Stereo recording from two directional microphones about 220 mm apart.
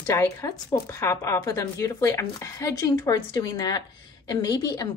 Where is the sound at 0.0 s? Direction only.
15° left (ahead or behind).